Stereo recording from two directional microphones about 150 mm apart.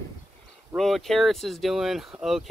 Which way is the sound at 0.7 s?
Centre (ahead or behind).